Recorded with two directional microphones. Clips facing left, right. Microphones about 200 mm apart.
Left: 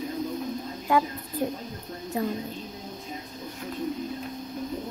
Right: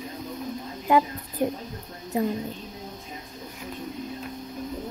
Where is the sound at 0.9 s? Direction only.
20° right (ahead or behind).